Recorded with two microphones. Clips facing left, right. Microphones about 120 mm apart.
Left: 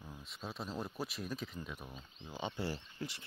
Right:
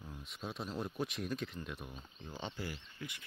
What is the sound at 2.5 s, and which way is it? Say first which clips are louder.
Speech: left 4 dB; 30° left (ahead or behind).